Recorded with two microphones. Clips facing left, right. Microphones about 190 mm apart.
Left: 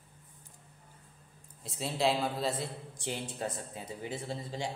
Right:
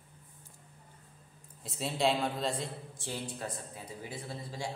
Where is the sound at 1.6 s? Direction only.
Centre (ahead or behind).